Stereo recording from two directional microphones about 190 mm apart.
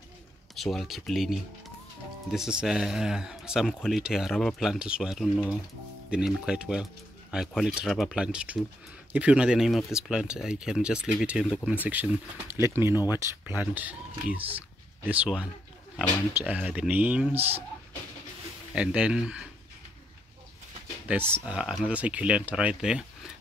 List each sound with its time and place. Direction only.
0.6 s speech: centre (ahead or behind)
18.8 s speech: 5° right (ahead or behind)
21.1 s speech: 10° right (ahead or behind)